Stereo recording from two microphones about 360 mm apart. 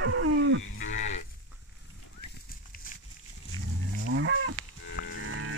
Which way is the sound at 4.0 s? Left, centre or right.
Right.